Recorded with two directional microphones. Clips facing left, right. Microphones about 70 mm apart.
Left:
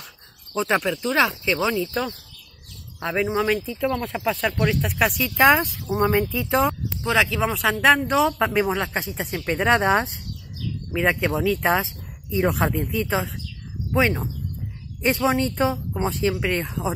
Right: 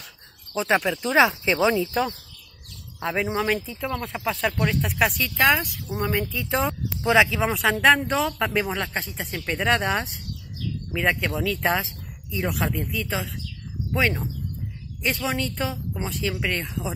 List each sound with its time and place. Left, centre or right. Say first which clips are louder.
0.6 s speech: even; centre
1.0 s speech: right 2 dB; centre
3.3 s speech: left 2 dB; centre
5.4 s speech: left 4 dB; left
6.5 s speech: left 4 dB; centre
8.2 s speech: left 4 dB; centre
10.9 s speech: left 3 dB; centre